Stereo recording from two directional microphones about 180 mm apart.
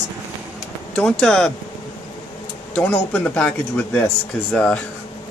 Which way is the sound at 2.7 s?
10° left (ahead or behind).